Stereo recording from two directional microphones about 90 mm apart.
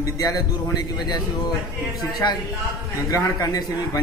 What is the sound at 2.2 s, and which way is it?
Speech, 50° left (ahead or behind).